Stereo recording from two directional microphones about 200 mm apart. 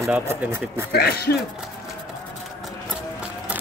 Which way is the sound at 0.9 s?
50° left (ahead or behind).